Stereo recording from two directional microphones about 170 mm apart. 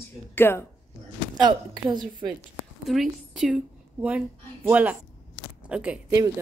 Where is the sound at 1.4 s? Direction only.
25° right (ahead or behind).